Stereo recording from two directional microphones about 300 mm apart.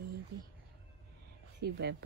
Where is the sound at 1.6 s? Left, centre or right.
Right.